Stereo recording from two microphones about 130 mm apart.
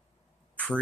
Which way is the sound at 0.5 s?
10° left (ahead or behind).